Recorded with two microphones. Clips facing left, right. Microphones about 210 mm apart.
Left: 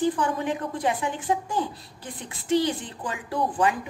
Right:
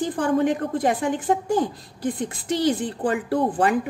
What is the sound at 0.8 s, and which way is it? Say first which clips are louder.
Speech: right 5 dB; 40° right (ahead or behind).